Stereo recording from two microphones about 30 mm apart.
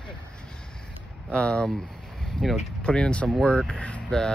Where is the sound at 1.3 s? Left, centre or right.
Left.